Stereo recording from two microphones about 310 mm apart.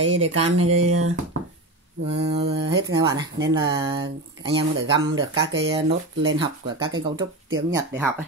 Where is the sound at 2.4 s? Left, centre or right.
Centre.